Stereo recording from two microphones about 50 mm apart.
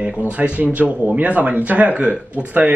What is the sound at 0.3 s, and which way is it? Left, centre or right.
Speech, right.